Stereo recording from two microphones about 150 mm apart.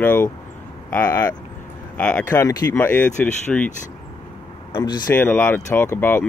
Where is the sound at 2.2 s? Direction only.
20° left (ahead or behind).